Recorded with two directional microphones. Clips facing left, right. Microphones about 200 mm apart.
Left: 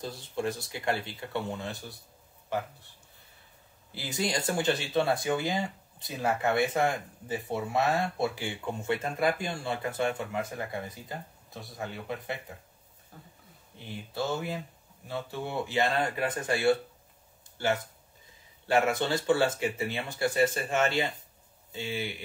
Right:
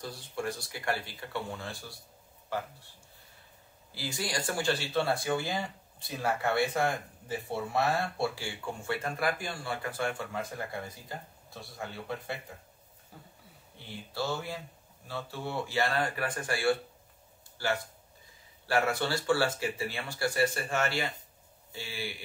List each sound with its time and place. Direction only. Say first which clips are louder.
0.0 s speech: left 3 dB; 20° left (ahead or behind)
3.9 s speech: left 4 dB; 20° left (ahead or behind)
13.1 s speech: even; 10° right (ahead or behind)
13.7 s speech: left 2 dB; 20° left (ahead or behind)